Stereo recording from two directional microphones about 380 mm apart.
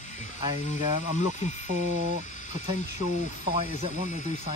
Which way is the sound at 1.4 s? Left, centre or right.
Centre.